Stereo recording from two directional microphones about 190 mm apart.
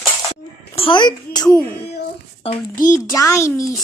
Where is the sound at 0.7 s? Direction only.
25° left (ahead or behind).